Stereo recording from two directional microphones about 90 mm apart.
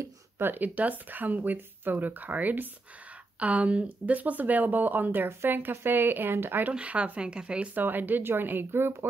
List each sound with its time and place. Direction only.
0.4 s speech: 20° right (ahead or behind)
6.7 s speech: 15° right (ahead or behind)